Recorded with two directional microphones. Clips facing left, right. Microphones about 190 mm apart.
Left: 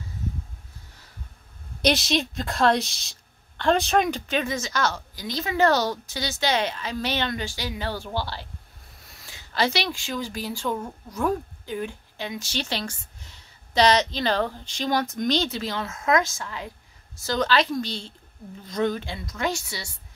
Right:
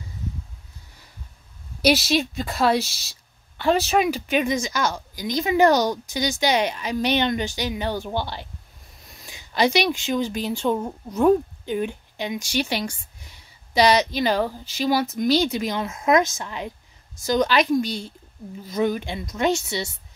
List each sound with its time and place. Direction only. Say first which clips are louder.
1.8 s a woman's voice: right 3 dB; 5° right (ahead or behind); by 19.9 s 20° right (ahead or behind)